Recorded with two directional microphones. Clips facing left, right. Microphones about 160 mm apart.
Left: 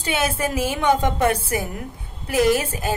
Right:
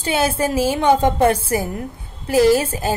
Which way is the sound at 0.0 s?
30° right (ahead or behind).